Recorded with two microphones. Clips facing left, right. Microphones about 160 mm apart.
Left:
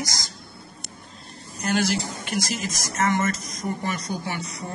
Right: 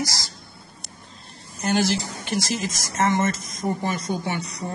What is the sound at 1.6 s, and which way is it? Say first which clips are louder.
Speech: right 2 dB; 25° right (ahead or behind).